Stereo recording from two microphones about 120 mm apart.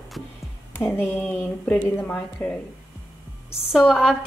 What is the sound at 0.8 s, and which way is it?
A woman's voice, 15° left (ahead or behind).